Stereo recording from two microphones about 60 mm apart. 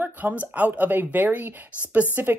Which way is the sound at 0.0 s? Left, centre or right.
Right.